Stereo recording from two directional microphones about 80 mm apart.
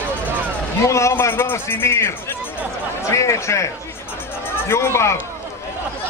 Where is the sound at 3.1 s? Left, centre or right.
Left.